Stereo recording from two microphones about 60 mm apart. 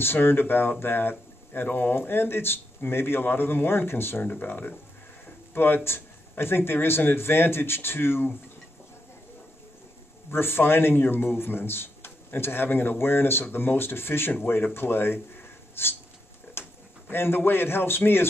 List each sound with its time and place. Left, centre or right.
0.0 s speech: left
10.3 s speech: left
17.1 s speech: left